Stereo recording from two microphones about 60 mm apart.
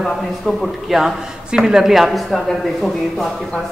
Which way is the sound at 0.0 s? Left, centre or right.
Centre.